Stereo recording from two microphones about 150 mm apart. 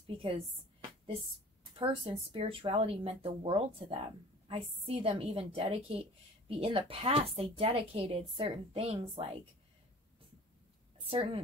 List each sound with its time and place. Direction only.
0.0 s a woman's voice: 40° right (ahead or behind)
1.8 s a woman's voice: 35° right (ahead or behind)
11.0 s a woman's voice: 40° right (ahead or behind)